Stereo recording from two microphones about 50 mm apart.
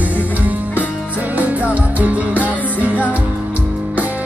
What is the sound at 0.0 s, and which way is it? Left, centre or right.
Music, right.